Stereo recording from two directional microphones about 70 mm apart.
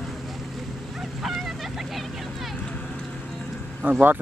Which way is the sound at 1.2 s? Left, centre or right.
Centre.